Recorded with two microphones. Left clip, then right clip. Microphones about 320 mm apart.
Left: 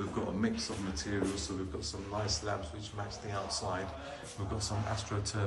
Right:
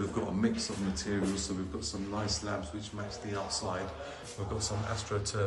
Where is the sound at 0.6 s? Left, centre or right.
Centre.